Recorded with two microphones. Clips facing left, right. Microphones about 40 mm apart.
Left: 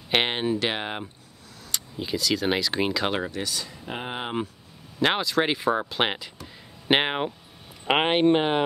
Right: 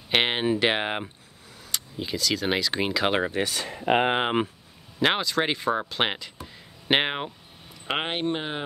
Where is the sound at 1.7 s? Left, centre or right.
Centre.